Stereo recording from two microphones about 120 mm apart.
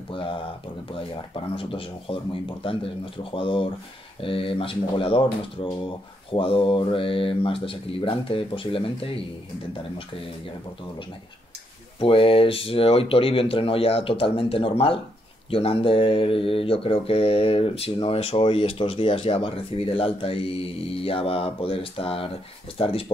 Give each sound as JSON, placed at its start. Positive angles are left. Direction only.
{"t": 0.1, "sound": "speech", "side_deg": 45}
{"t": 12.0, "sound": "speech", "side_deg": 50}